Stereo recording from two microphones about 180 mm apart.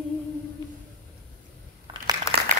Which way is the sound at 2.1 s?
20° right (ahead or behind).